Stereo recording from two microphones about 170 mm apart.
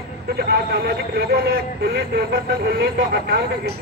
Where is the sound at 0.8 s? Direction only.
75° right (ahead or behind).